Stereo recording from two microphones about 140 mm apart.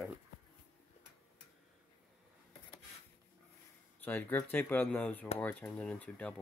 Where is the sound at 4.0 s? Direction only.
15° left (ahead or behind).